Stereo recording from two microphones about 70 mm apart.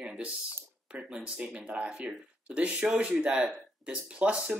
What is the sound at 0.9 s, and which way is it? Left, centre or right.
Speech, centre.